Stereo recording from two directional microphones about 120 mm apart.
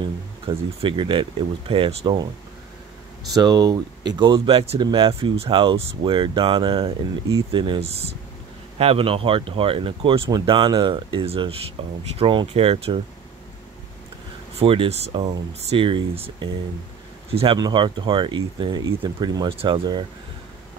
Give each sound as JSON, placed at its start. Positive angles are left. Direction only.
{"t": 0.0, "sound": "speech", "side_deg": -45}
{"t": 3.3, "sound": "speech", "side_deg": -35}
{"t": 11.2, "sound": "speech", "side_deg": -50}
{"t": 14.6, "sound": "speech", "side_deg": -50}
{"t": 17.6, "sound": "speech", "side_deg": -40}
{"t": 19.5, "sound": "speech", "side_deg": -50}